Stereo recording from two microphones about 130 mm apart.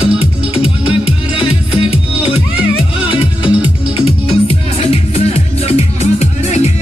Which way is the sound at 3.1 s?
40° left (ahead or behind).